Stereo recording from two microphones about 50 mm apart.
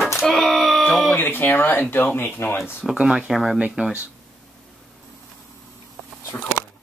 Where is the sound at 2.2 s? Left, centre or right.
Left.